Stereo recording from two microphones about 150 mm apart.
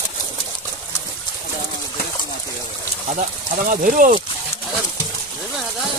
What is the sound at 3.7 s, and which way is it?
Speech, 60° right (ahead or behind).